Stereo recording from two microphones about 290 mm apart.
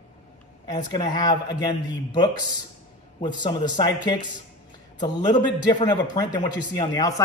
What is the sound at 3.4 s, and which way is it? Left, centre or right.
Speech, centre.